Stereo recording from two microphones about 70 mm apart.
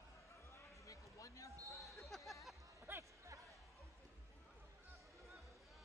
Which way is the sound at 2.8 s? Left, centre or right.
Right.